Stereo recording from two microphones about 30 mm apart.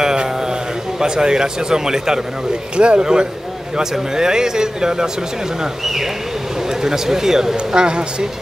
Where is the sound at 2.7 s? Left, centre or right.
Right.